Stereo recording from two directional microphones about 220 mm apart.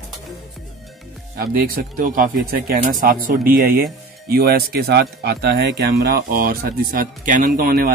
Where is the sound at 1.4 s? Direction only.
45° right (ahead or behind).